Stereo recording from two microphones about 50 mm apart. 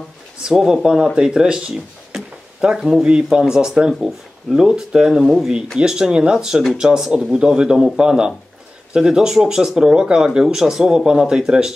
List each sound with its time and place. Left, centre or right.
0.4 s speech: centre
5.2 s speech: centre
5.8 s speech: centre